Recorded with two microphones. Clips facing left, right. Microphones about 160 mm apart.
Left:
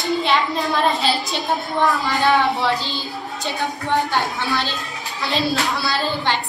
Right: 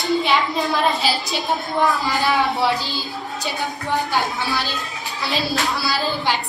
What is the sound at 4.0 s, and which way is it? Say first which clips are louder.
Speech: left 1 dB; 20° left (ahead or behind).